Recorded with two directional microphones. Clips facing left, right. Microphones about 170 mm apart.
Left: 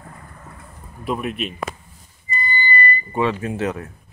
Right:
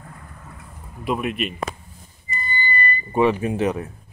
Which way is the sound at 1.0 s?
5° right (ahead or behind).